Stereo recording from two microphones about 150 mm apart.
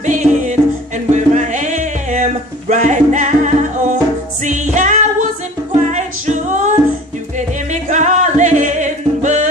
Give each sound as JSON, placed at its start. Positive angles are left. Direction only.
{"t": 0.0, "sound": "music", "side_deg": -55}